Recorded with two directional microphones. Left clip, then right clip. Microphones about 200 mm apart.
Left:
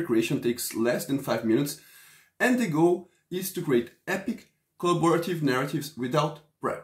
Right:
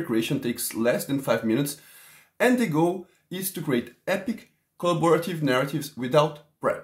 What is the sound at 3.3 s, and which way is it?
Speech, 20° right (ahead or behind).